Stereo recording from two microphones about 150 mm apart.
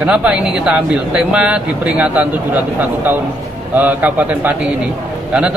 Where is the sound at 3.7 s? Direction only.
10° right (ahead or behind).